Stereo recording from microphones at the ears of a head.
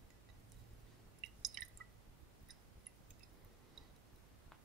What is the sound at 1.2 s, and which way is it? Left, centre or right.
Drip, right.